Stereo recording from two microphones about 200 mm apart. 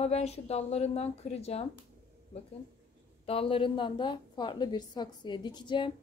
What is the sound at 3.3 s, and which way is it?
A woman's voice, 25° left (ahead or behind).